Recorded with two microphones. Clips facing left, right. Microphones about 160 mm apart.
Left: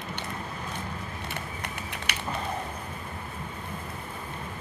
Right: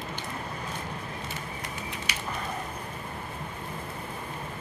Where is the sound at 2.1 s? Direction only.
65° left (ahead or behind).